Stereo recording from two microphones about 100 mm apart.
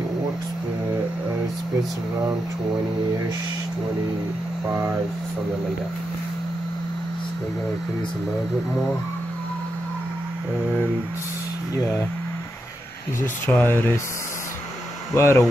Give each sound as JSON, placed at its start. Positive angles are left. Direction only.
{"t": 13.2, "sound": "speech", "side_deg": 15}
{"t": 15.1, "sound": "speech", "side_deg": 25}